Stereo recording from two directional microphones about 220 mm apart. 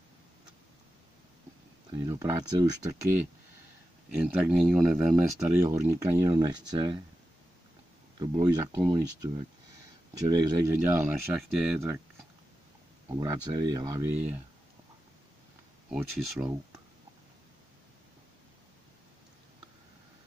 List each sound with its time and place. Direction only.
1.9 s speech: 15° right (ahead or behind)
4.3 s speech: centre (ahead or behind)
8.2 s speech: 15° right (ahead or behind)
11.3 s speech: centre (ahead or behind)
13.2 s speech: 15° right (ahead or behind)
15.9 s speech: 5° right (ahead or behind)